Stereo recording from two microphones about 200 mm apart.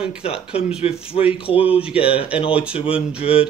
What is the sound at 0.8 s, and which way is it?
Speech, 30° left (ahead or behind).